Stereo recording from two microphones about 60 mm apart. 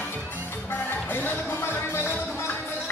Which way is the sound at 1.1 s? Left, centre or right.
Left.